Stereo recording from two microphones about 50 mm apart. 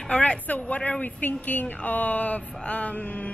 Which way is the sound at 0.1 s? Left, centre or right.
Centre.